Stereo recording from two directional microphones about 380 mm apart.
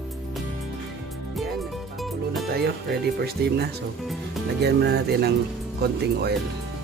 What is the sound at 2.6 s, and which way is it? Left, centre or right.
Speech, right.